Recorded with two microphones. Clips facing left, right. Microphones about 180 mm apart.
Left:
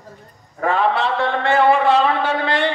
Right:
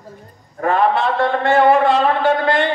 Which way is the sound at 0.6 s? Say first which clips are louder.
Right 2 dB; 50° right (ahead or behind).